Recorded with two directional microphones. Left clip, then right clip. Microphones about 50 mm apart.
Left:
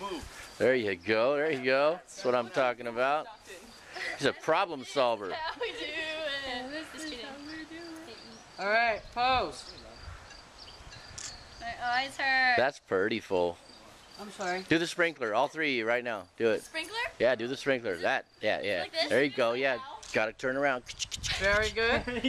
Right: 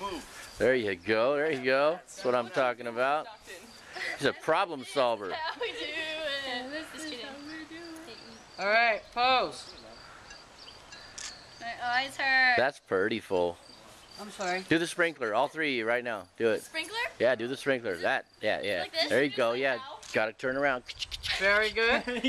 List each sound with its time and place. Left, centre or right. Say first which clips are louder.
0.0 s a sound: right 1 dB; centre
0.6 s speech: even; centre
3.9 s a sound: right 1 dB; centre
8.5 s speech: right 2 dB; right
11.6 s speech: right 1 dB; centre
14.7 s speech: even; centre
20.2 s speech: even; left
20.5 s speech: right 1 dB; left
21.3 s a sound: right 2 dB; right
21.7 s speech: right 2 dB; right